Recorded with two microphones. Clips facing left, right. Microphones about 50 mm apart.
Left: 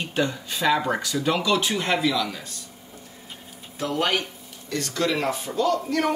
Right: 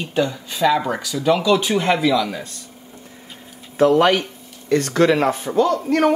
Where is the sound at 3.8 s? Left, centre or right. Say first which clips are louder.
Right 10 dB; right.